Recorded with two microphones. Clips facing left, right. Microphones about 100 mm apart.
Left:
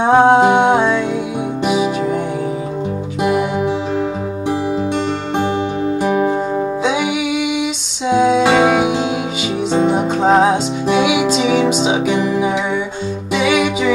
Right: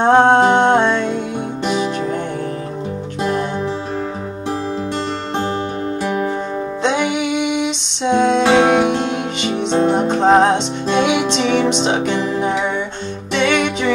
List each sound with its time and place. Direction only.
0.0 s music: 5° left (ahead or behind)
3.2 s music: 10° left (ahead or behind)
6.0 s music: 20° left (ahead or behind)
6.8 s music: 5° left (ahead or behind)